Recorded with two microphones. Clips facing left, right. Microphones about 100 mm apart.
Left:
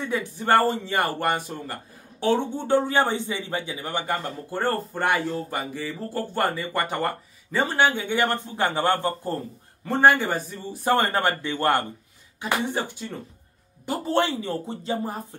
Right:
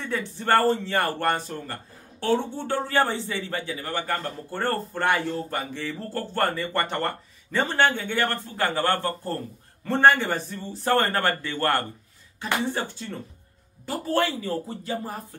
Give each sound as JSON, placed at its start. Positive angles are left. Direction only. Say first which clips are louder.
{"t": 0.1, "sound": "a man's voice", "louder": "left 1 dB", "side_deg": 15}